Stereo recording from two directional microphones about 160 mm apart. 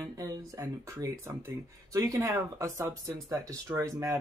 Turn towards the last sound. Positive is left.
turn(degrees=-20)  # may be behind; listen again after turning